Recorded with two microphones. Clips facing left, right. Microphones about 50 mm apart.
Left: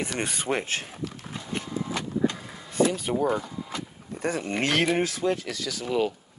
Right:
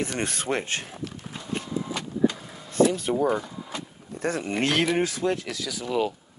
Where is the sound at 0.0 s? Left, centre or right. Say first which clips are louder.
Right 1 dB; centre.